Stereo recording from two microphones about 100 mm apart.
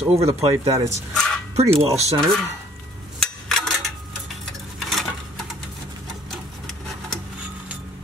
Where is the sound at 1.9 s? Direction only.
90° right.